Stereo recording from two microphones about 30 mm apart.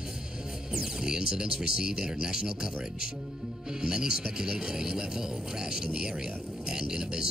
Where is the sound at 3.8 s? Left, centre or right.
Right.